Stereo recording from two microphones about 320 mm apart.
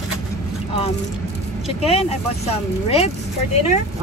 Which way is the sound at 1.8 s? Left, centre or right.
Centre.